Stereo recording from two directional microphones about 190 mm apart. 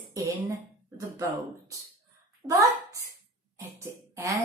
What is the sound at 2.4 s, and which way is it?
A woman's voice, 20° right (ahead or behind).